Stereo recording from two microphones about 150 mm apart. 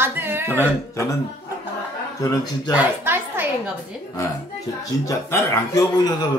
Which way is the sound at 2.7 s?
15° right (ahead or behind).